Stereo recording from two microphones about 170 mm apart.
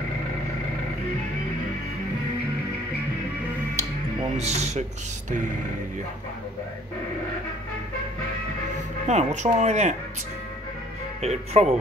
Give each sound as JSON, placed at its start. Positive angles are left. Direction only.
{"t": 4.4, "sound": "speech", "side_deg": -40}
{"t": 9.0, "sound": "speech", "side_deg": -45}
{"t": 11.1, "sound": "speech", "side_deg": -40}